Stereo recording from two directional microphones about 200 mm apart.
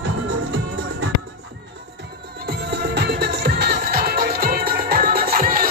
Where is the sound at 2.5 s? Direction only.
55° right (ahead or behind).